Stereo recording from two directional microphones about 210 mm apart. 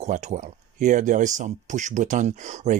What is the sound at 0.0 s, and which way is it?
Speech, 35° right (ahead or behind).